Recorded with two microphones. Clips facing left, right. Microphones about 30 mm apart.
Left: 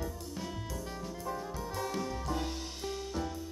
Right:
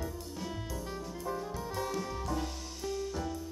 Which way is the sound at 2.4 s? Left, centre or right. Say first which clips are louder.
Even; left.